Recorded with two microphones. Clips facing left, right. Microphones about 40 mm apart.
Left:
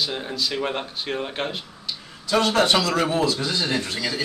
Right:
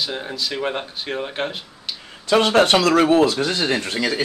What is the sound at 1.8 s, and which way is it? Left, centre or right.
Speech, right.